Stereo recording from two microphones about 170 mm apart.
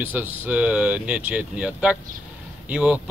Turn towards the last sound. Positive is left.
turn(degrees=-5)  # may be behind; listen again after turning